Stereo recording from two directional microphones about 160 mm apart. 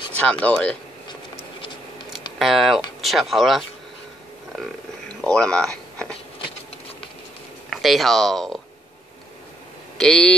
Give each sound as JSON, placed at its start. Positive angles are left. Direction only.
{"t": 0.1, "sound": "speech", "side_deg": 10}
{"t": 1.6, "sound": "a sound", "side_deg": 30}
{"t": 2.3, "sound": "speech", "side_deg": 0}
{"t": 7.7, "sound": "speech", "side_deg": 0}
{"t": 9.9, "sound": "speech", "side_deg": 5}